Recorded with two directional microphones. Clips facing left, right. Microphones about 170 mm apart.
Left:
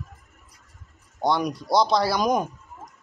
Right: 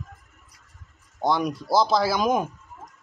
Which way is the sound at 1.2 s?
Centre (ahead or behind).